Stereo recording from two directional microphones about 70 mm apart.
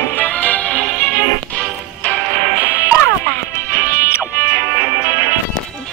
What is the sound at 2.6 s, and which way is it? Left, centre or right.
Music, left.